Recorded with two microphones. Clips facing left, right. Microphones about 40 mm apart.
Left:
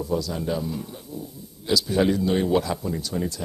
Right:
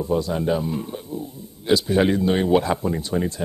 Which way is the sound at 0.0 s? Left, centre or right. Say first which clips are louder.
Right 4 dB; right.